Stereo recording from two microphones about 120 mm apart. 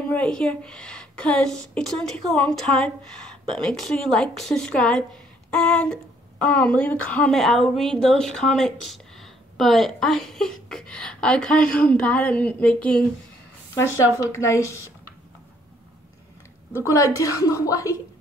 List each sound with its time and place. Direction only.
0.1 s a woman's voice: 10° left (ahead or behind)
14.2 s a woman's voice: 25° left (ahead or behind)
16.8 s a woman's voice: 25° left (ahead or behind)